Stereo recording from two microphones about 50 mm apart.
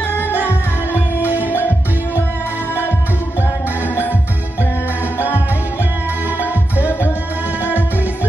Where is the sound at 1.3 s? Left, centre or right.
Left.